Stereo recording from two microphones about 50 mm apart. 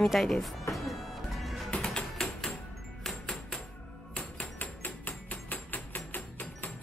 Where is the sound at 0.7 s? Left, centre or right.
Centre.